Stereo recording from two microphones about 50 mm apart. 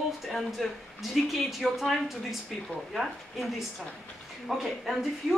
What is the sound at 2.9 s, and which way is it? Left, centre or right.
Speech, centre.